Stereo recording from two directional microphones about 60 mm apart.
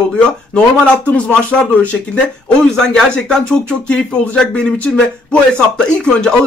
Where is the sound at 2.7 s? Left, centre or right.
Centre.